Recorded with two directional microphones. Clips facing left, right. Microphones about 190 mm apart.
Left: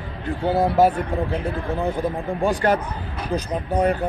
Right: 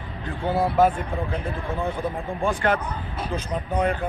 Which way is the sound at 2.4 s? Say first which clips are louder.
Left 3 dB; 40° left (ahead or behind).